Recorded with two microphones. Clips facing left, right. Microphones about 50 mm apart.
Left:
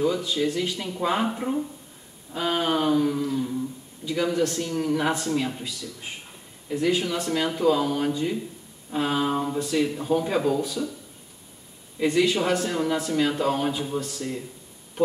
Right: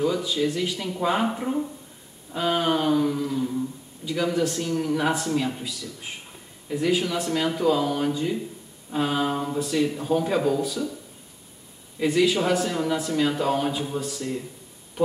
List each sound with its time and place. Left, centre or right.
0.0 s speech: centre
12.0 s speech: centre